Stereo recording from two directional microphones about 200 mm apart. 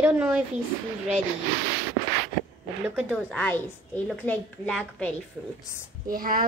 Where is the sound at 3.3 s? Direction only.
5° left (ahead or behind).